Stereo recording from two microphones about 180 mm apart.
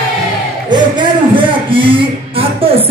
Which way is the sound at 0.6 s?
25° right (ahead or behind).